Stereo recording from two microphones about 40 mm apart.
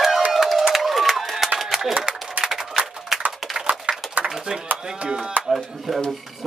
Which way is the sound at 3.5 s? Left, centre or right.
Right.